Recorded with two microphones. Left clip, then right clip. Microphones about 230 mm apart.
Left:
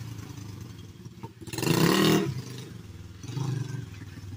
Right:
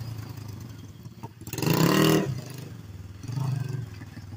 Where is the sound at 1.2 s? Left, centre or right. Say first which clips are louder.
Even; right.